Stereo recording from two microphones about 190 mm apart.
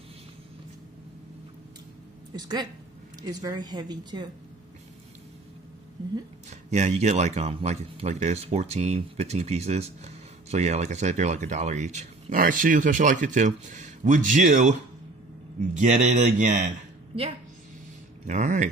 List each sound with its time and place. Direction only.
2.3 s speech: 20° right (ahead or behind)
6.7 s speech: 35° right (ahead or behind)